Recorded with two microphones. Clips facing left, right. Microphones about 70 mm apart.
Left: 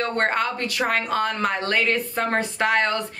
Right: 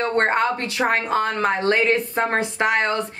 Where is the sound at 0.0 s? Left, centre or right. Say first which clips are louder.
Right 3 dB; right.